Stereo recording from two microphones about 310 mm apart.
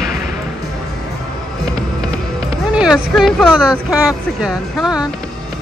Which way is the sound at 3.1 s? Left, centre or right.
Centre.